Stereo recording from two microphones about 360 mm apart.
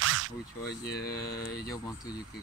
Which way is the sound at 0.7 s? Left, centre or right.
Left.